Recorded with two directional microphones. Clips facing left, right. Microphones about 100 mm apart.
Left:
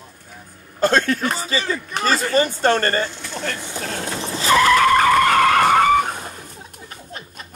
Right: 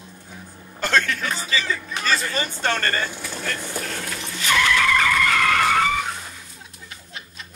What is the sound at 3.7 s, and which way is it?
Vehicle, 30° left (ahead or behind).